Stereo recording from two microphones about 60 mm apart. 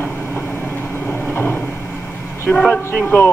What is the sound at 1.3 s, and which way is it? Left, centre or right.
Vehicle, left.